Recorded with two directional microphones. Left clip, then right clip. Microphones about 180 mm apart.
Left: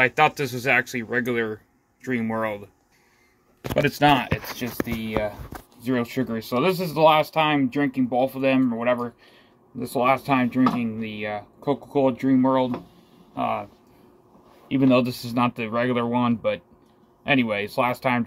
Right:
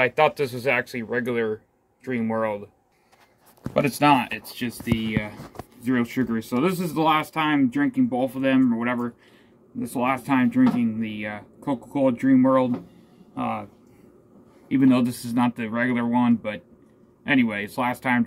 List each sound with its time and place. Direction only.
0.0 s speech: centre (ahead or behind)
3.7 s speech: 5° right (ahead or behind)
5.9 s speech: 10° left (ahead or behind); by 13.7 s 5° right (ahead or behind)
14.7 s speech: 5° left (ahead or behind)